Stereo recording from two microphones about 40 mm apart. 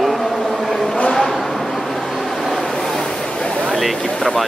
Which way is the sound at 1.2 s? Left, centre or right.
Centre.